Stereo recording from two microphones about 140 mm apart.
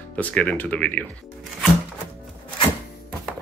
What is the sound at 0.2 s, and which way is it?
Speech, 10° left (ahead or behind).